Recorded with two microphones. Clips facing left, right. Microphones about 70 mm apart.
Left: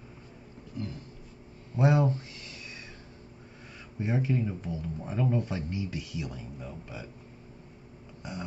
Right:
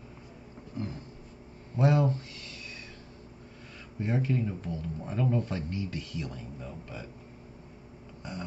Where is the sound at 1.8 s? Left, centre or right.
Centre.